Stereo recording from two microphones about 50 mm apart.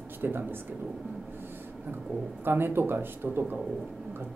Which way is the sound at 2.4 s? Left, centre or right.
Right.